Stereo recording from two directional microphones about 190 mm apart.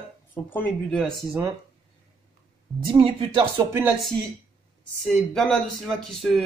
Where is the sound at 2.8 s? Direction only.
25° right (ahead or behind).